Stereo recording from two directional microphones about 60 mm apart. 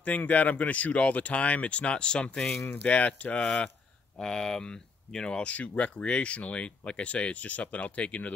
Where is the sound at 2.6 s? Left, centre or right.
Left.